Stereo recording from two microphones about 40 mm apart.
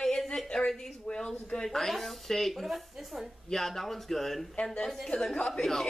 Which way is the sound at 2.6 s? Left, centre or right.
Centre.